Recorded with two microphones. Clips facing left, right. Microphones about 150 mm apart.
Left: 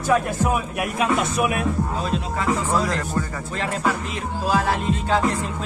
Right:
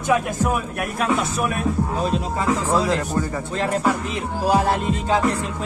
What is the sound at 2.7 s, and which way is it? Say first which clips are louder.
Speech: right 2 dB; 25° right (ahead or behind).